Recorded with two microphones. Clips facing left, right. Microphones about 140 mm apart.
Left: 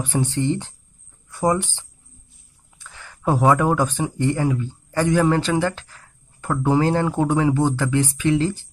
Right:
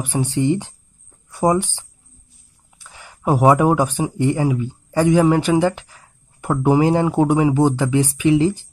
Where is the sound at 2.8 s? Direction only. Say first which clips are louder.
Right 2 dB; 15° right (ahead or behind).